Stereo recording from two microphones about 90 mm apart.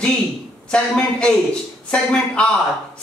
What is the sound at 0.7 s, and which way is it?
A woman's voice, 10° left (ahead or behind).